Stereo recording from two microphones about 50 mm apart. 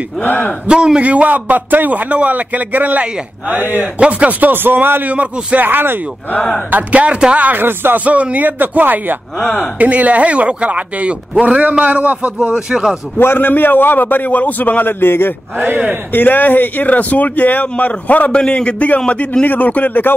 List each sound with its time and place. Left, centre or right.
0.2 s speech: left
0.7 s a man's voice: centre; by 5.9 s right
6.7 s a man's voice: right
7.6 s speech: right
8.0 s a man's voice: right
12.5 s speech: centre
13.2 s speech: left
18.4 s a man's voice: left
19.4 s speech: left